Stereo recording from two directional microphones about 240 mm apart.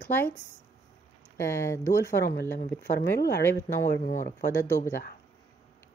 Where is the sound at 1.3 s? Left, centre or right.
Centre.